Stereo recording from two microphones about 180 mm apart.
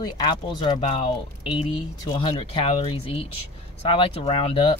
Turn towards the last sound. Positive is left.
turn(degrees=30)  # may be behind; listen again after turning